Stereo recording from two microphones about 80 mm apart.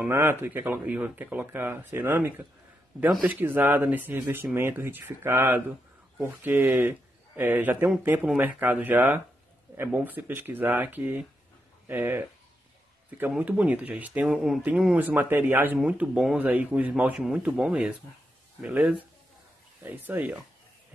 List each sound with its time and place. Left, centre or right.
0.1 s speech: right
13.4 s speech: centre
14.2 s speech: centre
15.0 s speech: right
15.8 s speech: centre